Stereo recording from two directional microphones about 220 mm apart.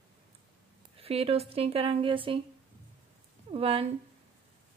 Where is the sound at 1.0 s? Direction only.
25° right (ahead or behind).